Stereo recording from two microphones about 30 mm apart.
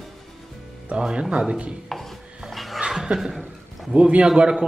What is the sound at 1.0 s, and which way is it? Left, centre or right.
Speech, right.